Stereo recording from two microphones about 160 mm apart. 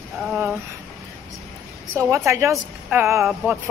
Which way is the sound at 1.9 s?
15° right (ahead or behind).